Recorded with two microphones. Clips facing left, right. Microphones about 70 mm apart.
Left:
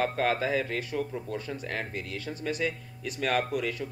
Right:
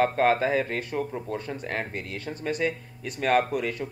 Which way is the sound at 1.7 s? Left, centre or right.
Right.